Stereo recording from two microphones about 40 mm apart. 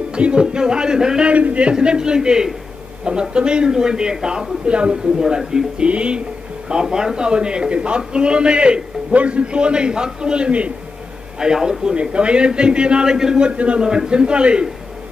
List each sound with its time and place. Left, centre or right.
0.1 s a man's voice: right
1.2 s a man's voice: right
1.7 s a man's voice: right
5.2 s speech: centre
5.8 s a man's voice: right
6.7 s a man's voice: centre
11.3 s speech: centre
11.8 s a man's voice: right
13.5 s a man's voice: right
13.8 s a man's voice: centre